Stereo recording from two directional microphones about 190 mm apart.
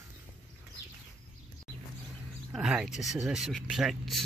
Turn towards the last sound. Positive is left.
turn(degrees=0)  # may be behind; listen again after turning